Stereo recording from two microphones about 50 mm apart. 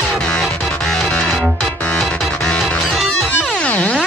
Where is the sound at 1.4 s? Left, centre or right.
Centre.